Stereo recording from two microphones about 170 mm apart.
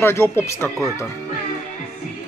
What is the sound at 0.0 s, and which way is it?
Speech, 15° left (ahead or behind).